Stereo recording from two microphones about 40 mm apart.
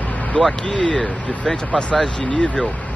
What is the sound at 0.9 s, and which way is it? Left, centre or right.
Speech, centre.